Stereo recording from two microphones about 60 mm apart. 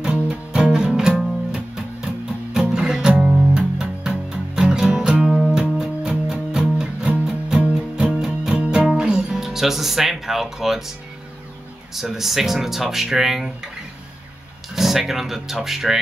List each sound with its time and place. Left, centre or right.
0.0 s music: centre
11.9 s speech: centre
14.8 s speech: centre